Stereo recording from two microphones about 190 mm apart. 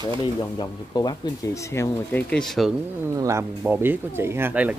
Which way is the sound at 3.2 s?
15° right (ahead or behind).